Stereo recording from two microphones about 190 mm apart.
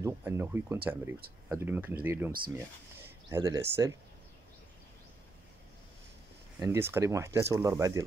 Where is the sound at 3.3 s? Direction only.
20° right (ahead or behind).